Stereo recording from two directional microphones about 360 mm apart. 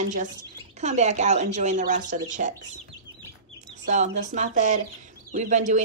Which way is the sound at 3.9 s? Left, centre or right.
Centre.